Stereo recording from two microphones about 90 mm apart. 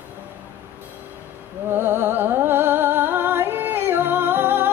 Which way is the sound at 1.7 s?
25° right (ahead or behind).